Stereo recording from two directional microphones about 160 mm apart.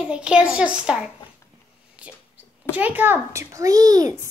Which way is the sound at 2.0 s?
10° right (ahead or behind).